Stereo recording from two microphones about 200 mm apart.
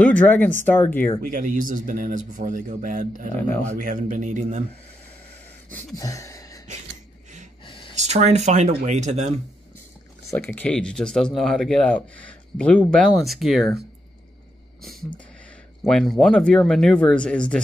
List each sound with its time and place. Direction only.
0.0 s speech: 5° left (ahead or behind)
1.2 s a man's voice: 45° right (ahead or behind)
5.9 s a sound: 15° left (ahead or behind)
7.9 s speech: 35° right (ahead or behind)
10.3 s speech: 5° left (ahead or behind)
15.8 s speech: centre (ahead or behind)